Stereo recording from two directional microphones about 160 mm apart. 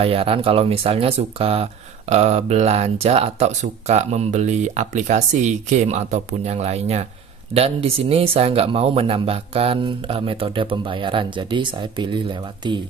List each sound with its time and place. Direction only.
0.0 s speech: 35° right (ahead or behind)